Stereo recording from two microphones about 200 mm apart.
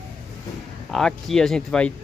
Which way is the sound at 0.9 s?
Centre (ahead or behind).